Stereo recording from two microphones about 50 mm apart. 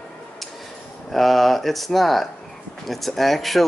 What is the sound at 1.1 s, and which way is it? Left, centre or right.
Speech, centre.